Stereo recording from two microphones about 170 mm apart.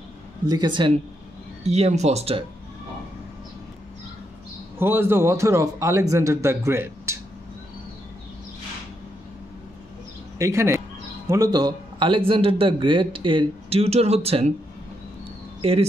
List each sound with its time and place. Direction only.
0.5 s speech: 25° right (ahead or behind)
1.6 s a man's voice: 40° right (ahead or behind)
4.7 s speech: 15° right (ahead or behind)
10.4 s a man's voice: 15° right (ahead or behind); by 14.5 s 35° right (ahead or behind)